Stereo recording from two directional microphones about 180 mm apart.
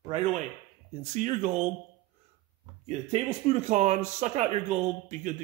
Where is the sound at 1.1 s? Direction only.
45° right (ahead or behind).